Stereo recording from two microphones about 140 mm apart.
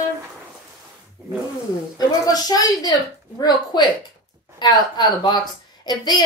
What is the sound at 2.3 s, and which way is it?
Speech, 25° left (ahead or behind).